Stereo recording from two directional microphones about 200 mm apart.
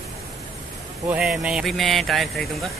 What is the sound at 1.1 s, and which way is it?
Speech, 5° right (ahead or behind).